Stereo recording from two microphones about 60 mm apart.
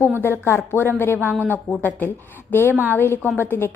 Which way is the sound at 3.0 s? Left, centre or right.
Left.